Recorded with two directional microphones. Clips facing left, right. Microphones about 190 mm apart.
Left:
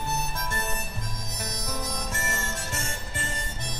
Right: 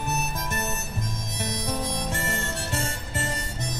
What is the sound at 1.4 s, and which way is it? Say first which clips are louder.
Harmonica: right 5 dB; 25° right (ahead or behind).